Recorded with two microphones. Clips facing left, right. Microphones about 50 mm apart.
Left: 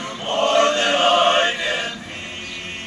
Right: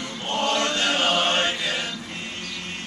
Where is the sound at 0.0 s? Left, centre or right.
Left.